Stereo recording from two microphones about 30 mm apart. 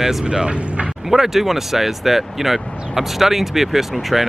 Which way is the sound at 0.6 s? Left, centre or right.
Right.